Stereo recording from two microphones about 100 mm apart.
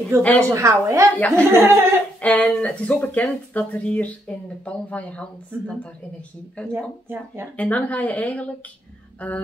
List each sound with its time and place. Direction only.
0.2 s speech: 15° left (ahead or behind)
0.5 s a woman's voice: 30° right (ahead or behind)
2.1 s speech: 15° left (ahead or behind)
7.1 s speech: 25° right (ahead or behind)
7.5 s speech: 15° left (ahead or behind)